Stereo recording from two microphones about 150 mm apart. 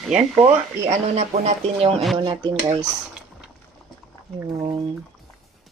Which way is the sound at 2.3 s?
25° right (ahead or behind).